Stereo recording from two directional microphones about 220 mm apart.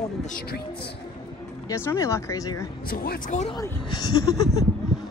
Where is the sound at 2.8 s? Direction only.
40° left (ahead or behind).